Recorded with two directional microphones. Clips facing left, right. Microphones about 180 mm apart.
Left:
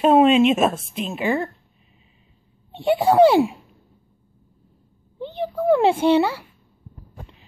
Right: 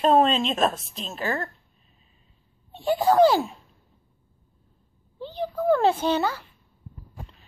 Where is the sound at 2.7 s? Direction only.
70° left (ahead or behind).